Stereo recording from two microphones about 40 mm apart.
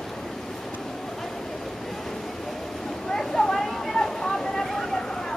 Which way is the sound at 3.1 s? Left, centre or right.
Centre.